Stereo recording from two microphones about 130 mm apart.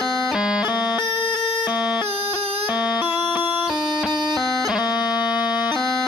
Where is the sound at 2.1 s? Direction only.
50° right (ahead or behind).